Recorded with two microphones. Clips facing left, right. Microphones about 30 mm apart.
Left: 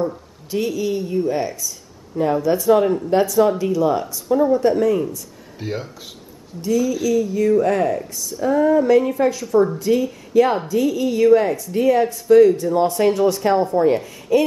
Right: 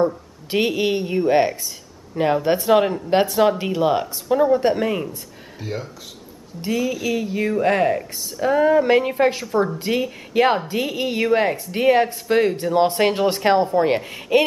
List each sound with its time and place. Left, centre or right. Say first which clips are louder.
0.5 s a woman's voice: right 2 dB; right
1.6 s a sound: left 2 dB; right
2.4 s a woman's voice: left 2 dB; right
5.6 s speech: left 2 dB; centre
6.6 s a woman's voice: left 3 dB; right